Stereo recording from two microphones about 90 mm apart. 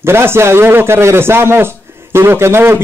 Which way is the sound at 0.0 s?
25° right (ahead or behind).